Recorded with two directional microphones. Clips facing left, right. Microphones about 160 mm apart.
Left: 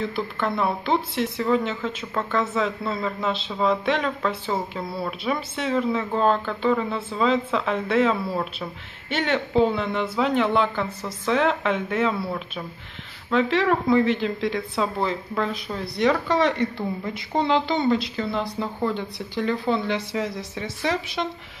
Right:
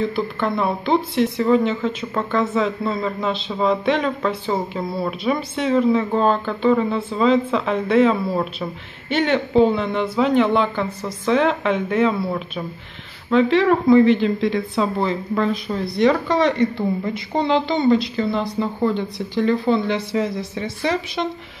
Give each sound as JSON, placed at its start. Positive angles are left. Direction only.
{"t": 0.1, "sound": "speech", "side_deg": 0}
{"t": 13.3, "sound": "speech", "side_deg": 0}